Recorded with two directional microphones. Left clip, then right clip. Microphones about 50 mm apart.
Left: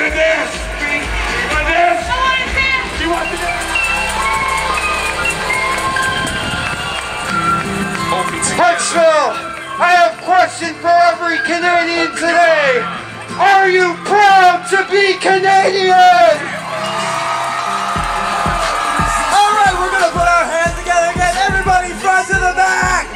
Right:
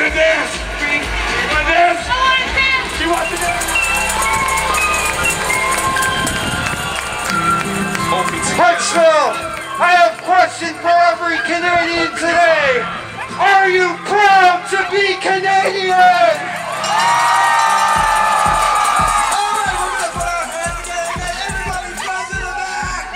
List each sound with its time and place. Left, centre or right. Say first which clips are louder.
0.0 s music: even; centre
8.1 s music: even; centre
9.8 s a sound: left 1 dB; centre
10.3 s music: left 1 dB; left
11.3 s a sound: left 1 dB; centre
14.1 s music: left 2 dB; left
14.9 s a sound: left 3 dB; left
19.3 s music: left 6 dB; left
20.9 s music: left 8 dB; left